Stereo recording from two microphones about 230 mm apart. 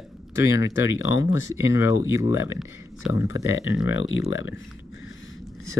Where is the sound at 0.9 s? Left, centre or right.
Left.